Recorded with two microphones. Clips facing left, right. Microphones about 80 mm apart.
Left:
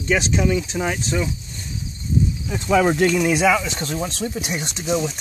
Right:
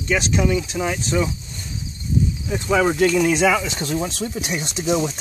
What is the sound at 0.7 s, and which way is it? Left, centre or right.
Speech, centre.